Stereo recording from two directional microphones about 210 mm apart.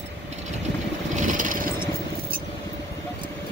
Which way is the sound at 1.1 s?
35° right (ahead or behind).